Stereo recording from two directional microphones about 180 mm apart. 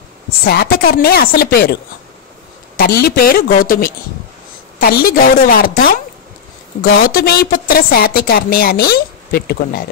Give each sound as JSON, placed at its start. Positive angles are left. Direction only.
{"t": 0.5, "sound": "speech", "side_deg": 60}
{"t": 2.8, "sound": "speech", "side_deg": 55}